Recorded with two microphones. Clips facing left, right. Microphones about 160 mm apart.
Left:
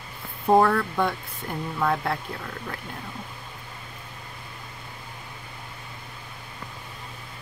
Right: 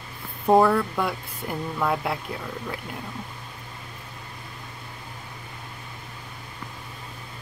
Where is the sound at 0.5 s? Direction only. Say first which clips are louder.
Right 1 dB; 5° right (ahead or behind).